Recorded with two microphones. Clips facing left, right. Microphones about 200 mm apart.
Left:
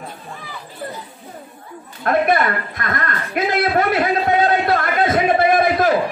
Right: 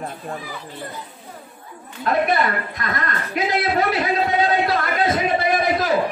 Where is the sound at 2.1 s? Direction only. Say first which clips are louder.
Left 3 dB; 55° left (ahead or behind).